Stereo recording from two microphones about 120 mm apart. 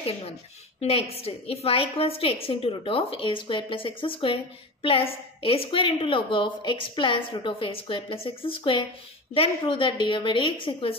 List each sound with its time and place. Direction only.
0.7 s a woman's voice: 55° left (ahead or behind)